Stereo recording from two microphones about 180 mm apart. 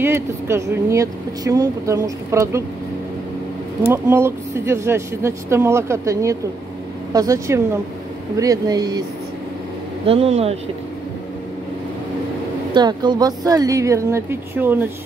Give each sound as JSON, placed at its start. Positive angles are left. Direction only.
{"t": 0.0, "sound": "speech", "side_deg": -15}
{"t": 3.9, "sound": "speech", "side_deg": -15}
{"t": 10.0, "sound": "speech", "side_deg": -30}
{"t": 12.7, "sound": "speech", "side_deg": -25}